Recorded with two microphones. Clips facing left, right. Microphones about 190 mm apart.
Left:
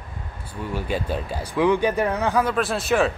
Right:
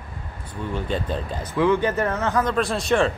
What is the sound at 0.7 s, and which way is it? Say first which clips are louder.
Speech: even; 10° left (ahead or behind).